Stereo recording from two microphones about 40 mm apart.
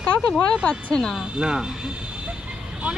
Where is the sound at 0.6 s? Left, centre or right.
Left.